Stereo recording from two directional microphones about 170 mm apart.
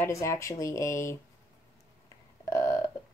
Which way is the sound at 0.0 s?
15° left (ahead or behind).